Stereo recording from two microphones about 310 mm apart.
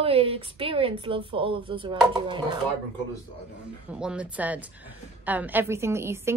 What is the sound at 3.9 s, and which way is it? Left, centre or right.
A woman's voice, centre.